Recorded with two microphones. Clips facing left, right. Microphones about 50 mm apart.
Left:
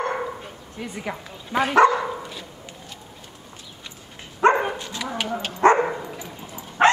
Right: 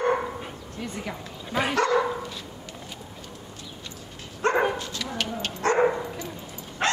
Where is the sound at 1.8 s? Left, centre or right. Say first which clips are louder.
Left 7 dB; centre.